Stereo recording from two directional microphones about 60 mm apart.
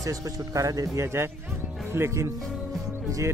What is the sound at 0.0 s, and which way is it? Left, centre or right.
Speech, right.